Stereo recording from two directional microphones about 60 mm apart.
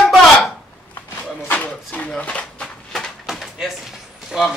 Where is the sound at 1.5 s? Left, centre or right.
Left.